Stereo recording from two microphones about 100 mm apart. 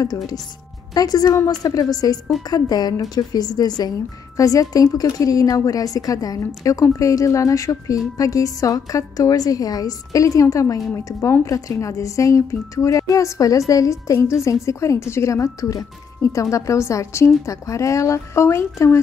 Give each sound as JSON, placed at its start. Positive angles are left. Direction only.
{"t": 0.0, "sound": "a woman's voice", "side_deg": 40}